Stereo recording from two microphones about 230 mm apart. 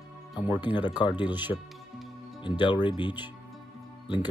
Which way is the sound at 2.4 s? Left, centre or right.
Centre.